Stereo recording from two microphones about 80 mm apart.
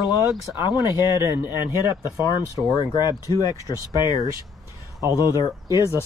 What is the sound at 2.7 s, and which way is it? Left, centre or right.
Speech, left.